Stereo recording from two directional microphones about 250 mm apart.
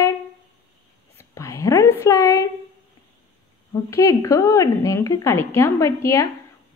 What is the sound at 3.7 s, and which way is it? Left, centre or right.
A woman's voice, centre.